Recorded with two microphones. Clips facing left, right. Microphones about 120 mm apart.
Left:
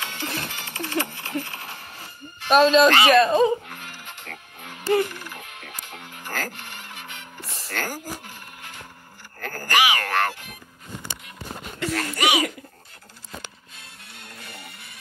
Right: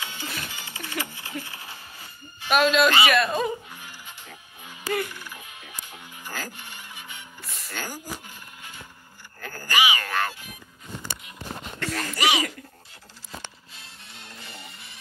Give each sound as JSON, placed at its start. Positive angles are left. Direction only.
{"t": 0.0, "sound": "music", "side_deg": 65}
{"t": 2.5, "sound": "speech", "side_deg": 35}
{"t": 3.6, "sound": "music", "side_deg": 75}
{"t": 7.3, "sound": "music", "side_deg": 30}
{"t": 7.7, "sound": "a sound", "side_deg": 60}
{"t": 9.7, "sound": "music", "side_deg": 65}
{"t": 11.8, "sound": "a sound", "side_deg": 0}
{"t": 12.2, "sound": "speech", "side_deg": 0}